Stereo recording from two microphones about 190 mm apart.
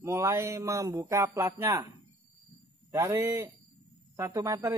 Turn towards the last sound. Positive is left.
turn(degrees=-15)  # may be behind; listen again after turning